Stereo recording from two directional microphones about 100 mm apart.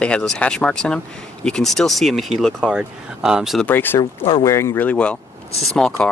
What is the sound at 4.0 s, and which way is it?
Speech, 60° left (ahead or behind).